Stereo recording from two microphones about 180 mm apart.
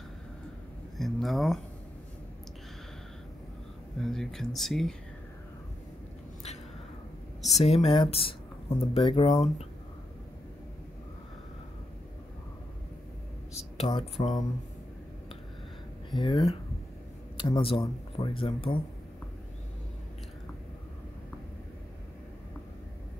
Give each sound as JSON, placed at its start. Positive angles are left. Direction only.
{"t": 0.9, "sound": "speech", "side_deg": 0}
{"t": 4.0, "sound": "speech", "side_deg": 0}
{"t": 7.6, "sound": "speech", "side_deg": 35}
{"t": 13.7, "sound": "speech", "side_deg": 30}
{"t": 16.1, "sound": "speech", "side_deg": 25}